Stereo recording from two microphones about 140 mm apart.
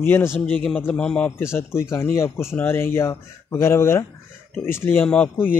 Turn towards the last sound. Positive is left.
turn(degrees=15)  # may be behind; listen again after turning